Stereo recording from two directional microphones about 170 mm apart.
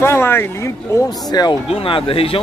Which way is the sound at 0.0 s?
15° left (ahead or behind).